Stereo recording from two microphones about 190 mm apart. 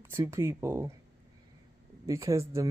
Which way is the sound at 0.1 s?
15° right (ahead or behind).